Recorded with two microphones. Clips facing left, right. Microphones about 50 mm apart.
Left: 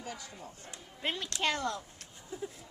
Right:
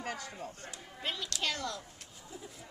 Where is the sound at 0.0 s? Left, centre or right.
Right.